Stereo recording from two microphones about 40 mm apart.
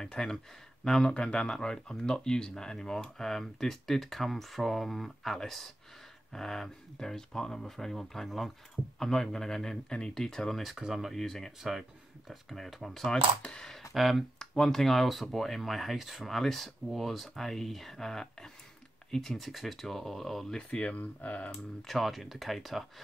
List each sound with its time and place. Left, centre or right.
0.0 s speech: centre
13.1 s speech: centre
13.9 s speech: centre
14.4 s speech: centre
20.5 s speech: left
21.8 s speech: centre